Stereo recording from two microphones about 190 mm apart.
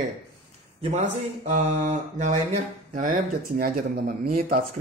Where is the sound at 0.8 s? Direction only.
35° right (ahead or behind).